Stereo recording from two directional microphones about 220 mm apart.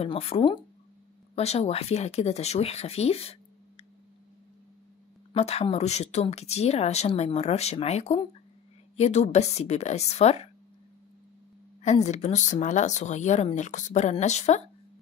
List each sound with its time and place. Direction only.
0.0 s speech: 25° left (ahead or behind)
5.3 s speech: 30° left (ahead or behind)
11.8 s speech: 30° left (ahead or behind)